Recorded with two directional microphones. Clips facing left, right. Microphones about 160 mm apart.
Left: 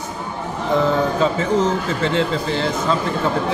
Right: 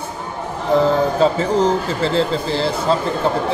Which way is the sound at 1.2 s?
35° right (ahead or behind).